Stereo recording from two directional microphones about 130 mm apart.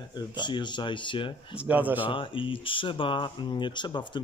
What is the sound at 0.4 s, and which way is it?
Speech, 35° left (ahead or behind).